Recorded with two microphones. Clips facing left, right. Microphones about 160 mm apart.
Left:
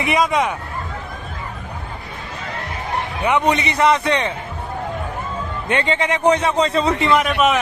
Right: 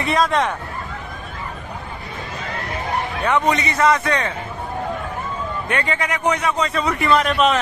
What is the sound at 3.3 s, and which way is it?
A man's voice, 20° left (ahead or behind).